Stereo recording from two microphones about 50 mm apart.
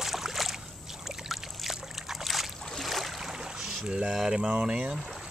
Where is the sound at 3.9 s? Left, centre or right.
Centre.